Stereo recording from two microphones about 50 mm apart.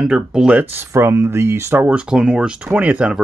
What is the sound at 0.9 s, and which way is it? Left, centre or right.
Speech, right.